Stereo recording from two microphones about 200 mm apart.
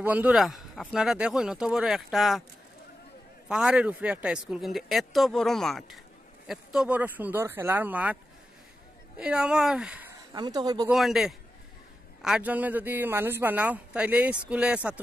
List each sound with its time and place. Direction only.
0.0 s speech: 10° right (ahead or behind)
3.4 s a man's voice: 5° right (ahead or behind)
9.2 s speech: 5° right (ahead or behind)
10.3 s speech: 20° right (ahead or behind)
10.9 s a man's voice: centre (ahead or behind)